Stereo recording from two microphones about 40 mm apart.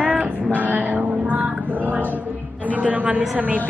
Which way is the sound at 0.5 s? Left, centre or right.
Right.